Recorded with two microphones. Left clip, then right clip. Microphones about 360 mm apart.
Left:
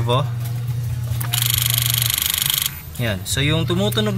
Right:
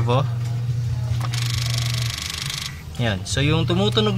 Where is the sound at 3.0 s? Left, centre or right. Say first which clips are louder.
Left 1 dB; centre.